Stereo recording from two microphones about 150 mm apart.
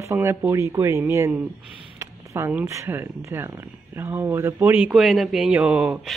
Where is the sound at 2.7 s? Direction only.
20° right (ahead or behind).